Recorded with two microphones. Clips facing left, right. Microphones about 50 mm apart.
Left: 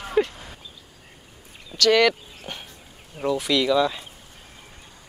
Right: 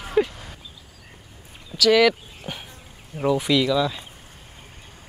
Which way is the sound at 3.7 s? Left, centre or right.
Centre.